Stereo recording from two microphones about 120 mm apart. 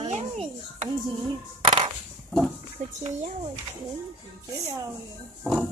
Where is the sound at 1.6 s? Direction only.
45° right (ahead or behind).